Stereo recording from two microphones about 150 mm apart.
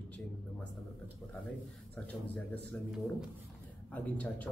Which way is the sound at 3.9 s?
10° left (ahead or behind).